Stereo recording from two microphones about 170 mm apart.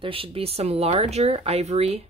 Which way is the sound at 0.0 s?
35° right (ahead or behind).